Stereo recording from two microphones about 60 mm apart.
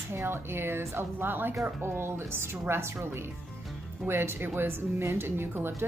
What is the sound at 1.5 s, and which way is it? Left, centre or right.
A woman's voice, right.